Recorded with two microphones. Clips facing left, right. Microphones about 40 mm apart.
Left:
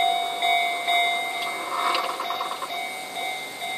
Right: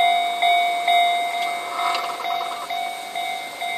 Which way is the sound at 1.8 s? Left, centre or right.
Centre.